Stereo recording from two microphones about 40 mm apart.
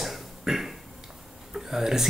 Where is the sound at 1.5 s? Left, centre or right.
Centre.